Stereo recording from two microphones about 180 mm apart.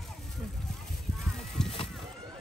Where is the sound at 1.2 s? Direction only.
Centre (ahead or behind).